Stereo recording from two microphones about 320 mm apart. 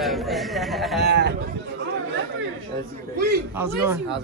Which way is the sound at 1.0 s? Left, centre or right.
Right.